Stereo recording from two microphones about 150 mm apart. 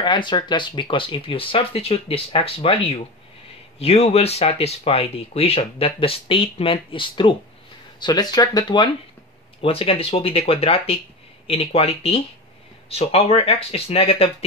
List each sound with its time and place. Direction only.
0.0 s speech: 30° left (ahead or behind)